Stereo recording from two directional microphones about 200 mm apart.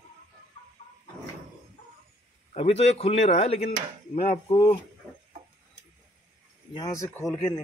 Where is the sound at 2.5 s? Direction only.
30° left (ahead or behind).